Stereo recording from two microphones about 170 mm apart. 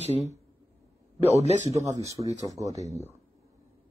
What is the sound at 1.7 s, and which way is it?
Speech, 20° right (ahead or behind).